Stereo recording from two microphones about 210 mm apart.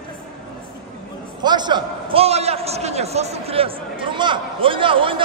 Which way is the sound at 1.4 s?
20° right (ahead or behind).